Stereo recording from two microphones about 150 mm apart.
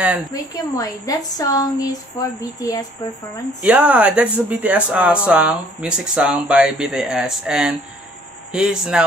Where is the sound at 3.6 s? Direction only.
10° right (ahead or behind).